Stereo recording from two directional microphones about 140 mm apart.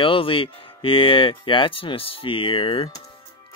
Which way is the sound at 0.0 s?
40° left (ahead or behind).